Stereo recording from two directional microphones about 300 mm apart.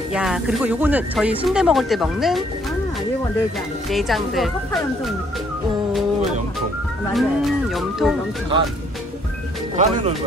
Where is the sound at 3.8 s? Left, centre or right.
Centre.